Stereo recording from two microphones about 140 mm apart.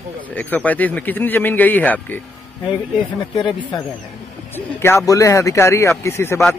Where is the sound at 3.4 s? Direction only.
35° left (ahead or behind).